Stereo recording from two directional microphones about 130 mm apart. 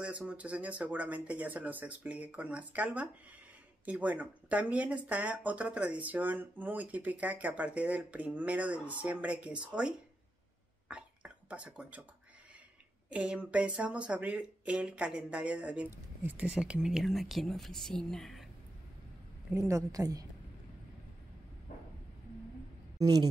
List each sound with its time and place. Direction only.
0.0 s speech: 10° right (ahead or behind)
10.9 s a sound: 10° right (ahead or behind)
13.1 s speech: 10° right (ahead or behind)
19.5 s a woman's voice: 25° right (ahead or behind)
22.9 s a woman's voice: 30° right (ahead or behind)